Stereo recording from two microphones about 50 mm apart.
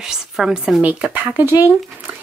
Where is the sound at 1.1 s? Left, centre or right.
Right.